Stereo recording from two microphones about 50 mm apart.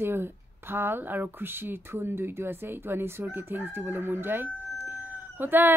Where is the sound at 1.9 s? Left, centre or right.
Right.